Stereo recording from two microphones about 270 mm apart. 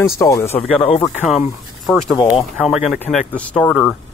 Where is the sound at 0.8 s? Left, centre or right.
Left.